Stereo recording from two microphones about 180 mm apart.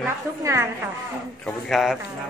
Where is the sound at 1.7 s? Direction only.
Centre (ahead or behind).